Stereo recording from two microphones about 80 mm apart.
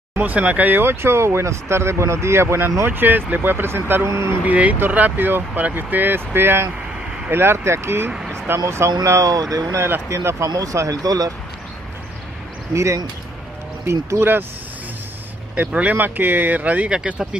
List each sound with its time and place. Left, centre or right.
0.1 s speech: centre
4.5 s speech: centre; by 9.8 s right
9.8 s speech: right
10.0 s speech: right
12.7 s speech: right
15.5 s speech: centre